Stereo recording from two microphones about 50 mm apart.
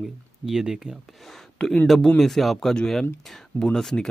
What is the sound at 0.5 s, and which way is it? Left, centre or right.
Speech, centre.